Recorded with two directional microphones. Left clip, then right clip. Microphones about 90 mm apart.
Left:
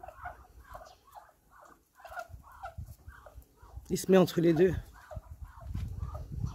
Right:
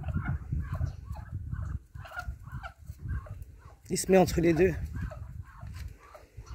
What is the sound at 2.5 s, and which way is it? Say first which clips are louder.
Fowl: right 3 dB; 15° right (ahead or behind).